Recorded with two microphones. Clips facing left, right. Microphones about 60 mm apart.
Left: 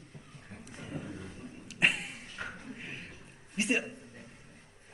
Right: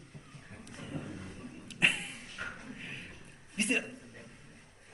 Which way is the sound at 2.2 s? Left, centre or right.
Left.